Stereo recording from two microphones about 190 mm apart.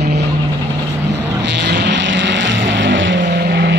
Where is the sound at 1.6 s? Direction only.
65° right (ahead or behind).